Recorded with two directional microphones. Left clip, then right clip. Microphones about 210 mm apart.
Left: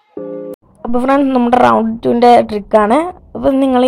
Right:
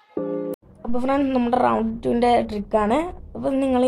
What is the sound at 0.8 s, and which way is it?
A woman's voice, 25° left (ahead or behind).